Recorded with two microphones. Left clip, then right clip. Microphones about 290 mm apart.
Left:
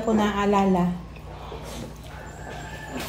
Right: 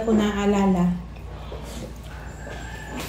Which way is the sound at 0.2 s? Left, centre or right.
Centre.